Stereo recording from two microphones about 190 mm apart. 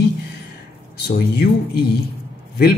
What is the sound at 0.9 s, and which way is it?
Speech, 60° left (ahead or behind).